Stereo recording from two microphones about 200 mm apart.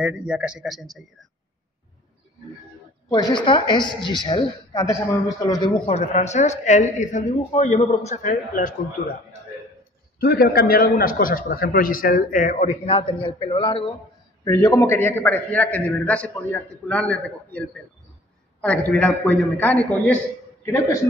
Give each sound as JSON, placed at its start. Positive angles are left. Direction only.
{"t": 0.0, "sound": "a man's voice", "side_deg": -5}
{"t": 3.1, "sound": "a woman's voice", "side_deg": 20}
{"t": 5.9, "sound": "a man's voice", "side_deg": 35}
{"t": 10.1, "sound": "a man's voice", "side_deg": 50}